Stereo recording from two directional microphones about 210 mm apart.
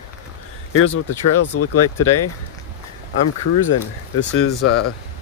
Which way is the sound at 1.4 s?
90° left.